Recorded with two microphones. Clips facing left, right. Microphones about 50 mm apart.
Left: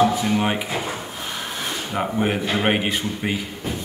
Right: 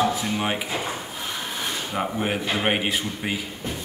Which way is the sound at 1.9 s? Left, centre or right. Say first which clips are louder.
Left 4 dB; centre.